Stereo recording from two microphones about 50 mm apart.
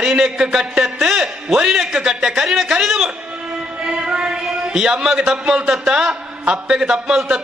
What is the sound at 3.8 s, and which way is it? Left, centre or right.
A man's voice, centre.